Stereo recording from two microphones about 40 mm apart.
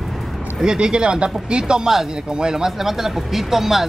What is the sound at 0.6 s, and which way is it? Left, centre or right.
Speech, right.